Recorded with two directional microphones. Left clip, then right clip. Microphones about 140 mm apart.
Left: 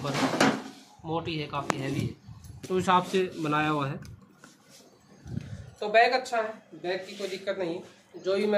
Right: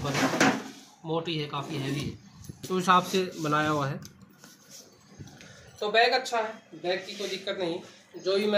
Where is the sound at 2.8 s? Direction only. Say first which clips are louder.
Right 1 dB; 15° left (ahead or behind).